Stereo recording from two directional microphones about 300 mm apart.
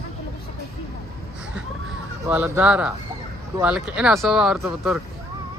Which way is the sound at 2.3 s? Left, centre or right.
Centre.